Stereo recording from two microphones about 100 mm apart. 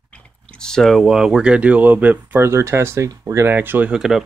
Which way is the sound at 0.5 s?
5° left (ahead or behind).